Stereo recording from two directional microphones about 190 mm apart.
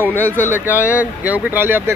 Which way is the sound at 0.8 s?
10° right (ahead or behind).